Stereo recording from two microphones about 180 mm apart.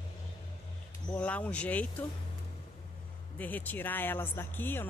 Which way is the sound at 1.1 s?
5° left (ahead or behind).